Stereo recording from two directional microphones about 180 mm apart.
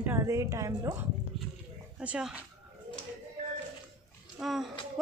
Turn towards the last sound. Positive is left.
turn(degrees=0)  # may be behind; listen again after turning